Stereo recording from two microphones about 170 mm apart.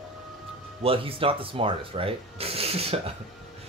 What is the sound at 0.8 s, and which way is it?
Speech, 35° right (ahead or behind).